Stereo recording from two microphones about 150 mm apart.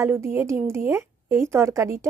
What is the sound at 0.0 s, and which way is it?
Speech, 15° right (ahead or behind).